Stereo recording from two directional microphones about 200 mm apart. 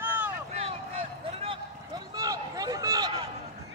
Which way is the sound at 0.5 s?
30° right (ahead or behind).